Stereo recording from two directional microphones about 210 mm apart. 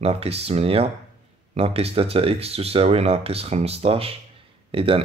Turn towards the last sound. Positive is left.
turn(degrees=-25)  # may be behind; listen again after turning